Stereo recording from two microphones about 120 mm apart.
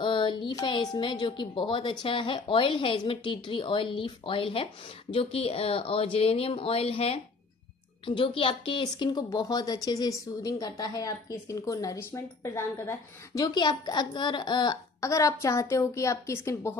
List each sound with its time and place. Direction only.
0.0 s a woman's voice: 40° left (ahead or behind)
15.0 s a woman's voice: 25° left (ahead or behind)